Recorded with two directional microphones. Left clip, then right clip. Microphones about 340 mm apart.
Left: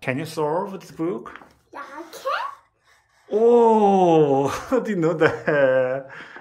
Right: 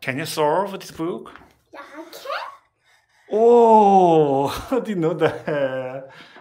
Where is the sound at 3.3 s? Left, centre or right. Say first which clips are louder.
Right 3 dB; centre.